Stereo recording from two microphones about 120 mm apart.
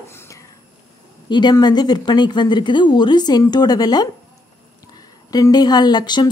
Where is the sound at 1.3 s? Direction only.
35° left (ahead or behind).